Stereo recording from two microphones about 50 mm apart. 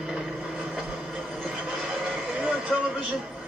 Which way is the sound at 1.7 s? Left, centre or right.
Centre.